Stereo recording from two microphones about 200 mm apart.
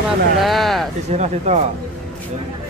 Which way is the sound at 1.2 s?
35° right (ahead or behind).